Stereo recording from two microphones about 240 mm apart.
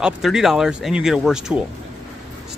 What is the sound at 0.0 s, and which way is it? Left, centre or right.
Speech, centre.